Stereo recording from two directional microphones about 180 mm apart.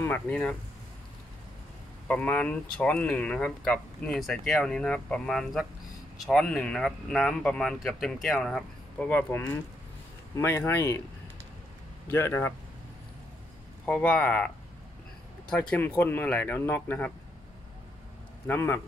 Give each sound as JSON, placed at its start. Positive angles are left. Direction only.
{"t": 0.0, "sound": "speech", "side_deg": 10}
{"t": 2.0, "sound": "speech", "side_deg": 5}
{"t": 12.1, "sound": "speech", "side_deg": 15}
{"t": 13.8, "sound": "speech", "side_deg": 5}
{"t": 15.5, "sound": "speech", "side_deg": 5}
{"t": 18.5, "sound": "speech", "side_deg": 15}